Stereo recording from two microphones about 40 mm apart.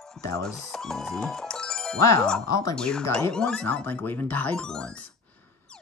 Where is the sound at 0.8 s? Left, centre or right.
Centre.